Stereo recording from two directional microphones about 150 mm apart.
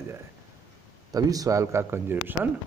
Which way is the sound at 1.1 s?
25° right (ahead or behind).